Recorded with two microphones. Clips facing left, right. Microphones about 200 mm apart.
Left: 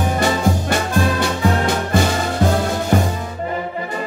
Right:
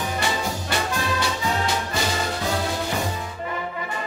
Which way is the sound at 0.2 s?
50° left (ahead or behind).